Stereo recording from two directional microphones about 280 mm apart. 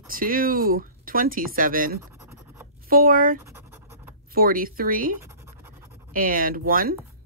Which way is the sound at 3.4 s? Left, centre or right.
Centre.